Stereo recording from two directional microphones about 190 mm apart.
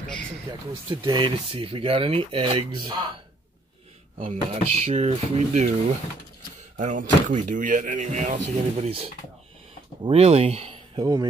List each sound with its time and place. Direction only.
0.5 s speech: 20° right (ahead or behind)
4.2 s speech: 35° right (ahead or behind)
6.8 s speech: 40° right (ahead or behind); by 11.2 s 25° right (ahead or behind)